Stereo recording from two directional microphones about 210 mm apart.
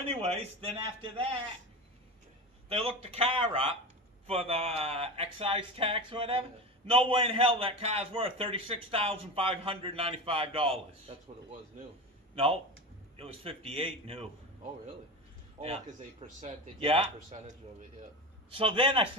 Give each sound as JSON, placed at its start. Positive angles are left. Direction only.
{"t": 0.3, "sound": "a man's voice", "side_deg": -25}
{"t": 2.7, "sound": "a man's voice", "side_deg": -25}
{"t": 13.1, "sound": "a man's voice", "side_deg": -25}
{"t": 15.6, "sound": "a man's voice", "side_deg": -30}